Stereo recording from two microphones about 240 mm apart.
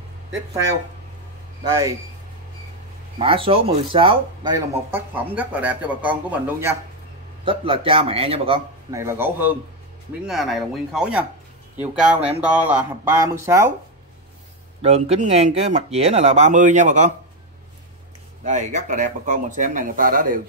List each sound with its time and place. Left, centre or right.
1.6 s speech: centre
3.2 s speech: right
7.4 s speech: right
8.9 s speech: centre
14.8 s speech: right
18.4 s speech: right